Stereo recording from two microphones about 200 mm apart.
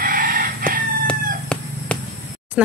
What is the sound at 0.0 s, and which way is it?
Chicken, 45° right (ahead or behind).